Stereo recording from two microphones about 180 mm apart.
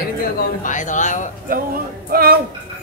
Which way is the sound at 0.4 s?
45° left (ahead or behind).